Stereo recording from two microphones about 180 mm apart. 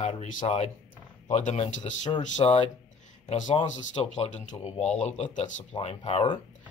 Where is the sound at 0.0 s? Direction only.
35° left (ahead or behind).